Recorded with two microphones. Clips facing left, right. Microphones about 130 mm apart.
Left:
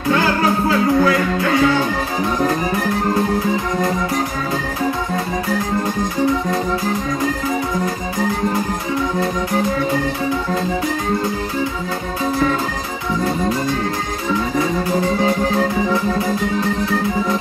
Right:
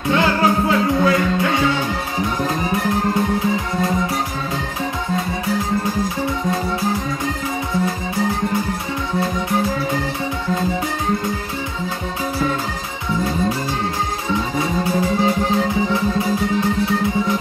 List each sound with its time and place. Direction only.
0.7 s music: 25° right (ahead or behind)